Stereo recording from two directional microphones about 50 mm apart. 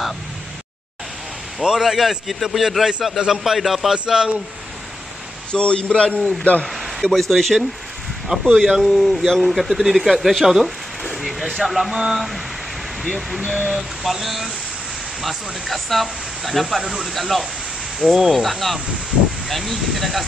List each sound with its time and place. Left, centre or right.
1.6 s speech: centre
3.9 s speech: centre
5.5 s a man's voice: left
6.6 s speech: centre